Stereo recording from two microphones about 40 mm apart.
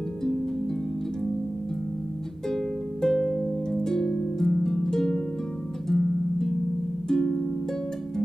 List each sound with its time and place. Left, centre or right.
2.5 s music: centre
4.4 s harp: centre
5.9 s music: centre